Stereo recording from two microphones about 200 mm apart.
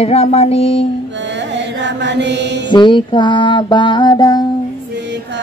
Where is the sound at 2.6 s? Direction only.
25° left (ahead or behind).